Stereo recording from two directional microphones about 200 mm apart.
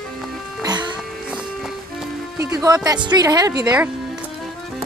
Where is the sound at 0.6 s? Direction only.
20° right (ahead or behind).